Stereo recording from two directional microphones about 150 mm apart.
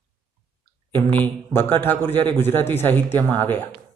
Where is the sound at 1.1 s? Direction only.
15° left (ahead or behind).